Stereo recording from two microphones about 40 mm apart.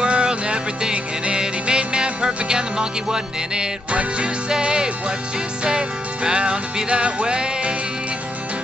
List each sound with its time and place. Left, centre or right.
0.0 s music: right